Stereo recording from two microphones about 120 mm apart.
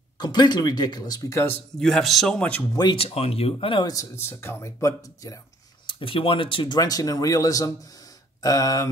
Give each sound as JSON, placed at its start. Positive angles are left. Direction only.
{"t": 0.2, "sound": "speech", "side_deg": 35}
{"t": 1.8, "sound": "speech", "side_deg": 0}
{"t": 2.7, "sound": "speech", "side_deg": 35}
{"t": 3.0, "sound": "speech", "side_deg": 55}
{"t": 3.8, "sound": "speech", "side_deg": 25}
{"t": 5.9, "sound": "speech", "side_deg": 45}